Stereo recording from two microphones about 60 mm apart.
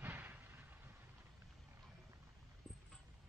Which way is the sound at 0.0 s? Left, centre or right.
Right.